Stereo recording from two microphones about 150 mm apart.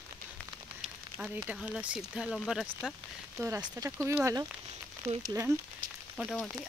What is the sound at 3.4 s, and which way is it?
Speech, 20° right (ahead or behind).